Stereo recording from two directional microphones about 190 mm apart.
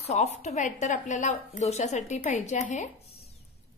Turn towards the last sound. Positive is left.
turn(degrees=35)  # may be behind; listen again after turning